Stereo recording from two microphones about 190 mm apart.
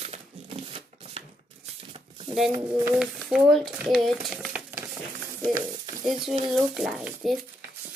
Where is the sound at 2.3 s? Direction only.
25° right (ahead or behind).